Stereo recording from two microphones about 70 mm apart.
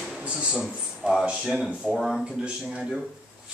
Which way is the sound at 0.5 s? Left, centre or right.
Centre.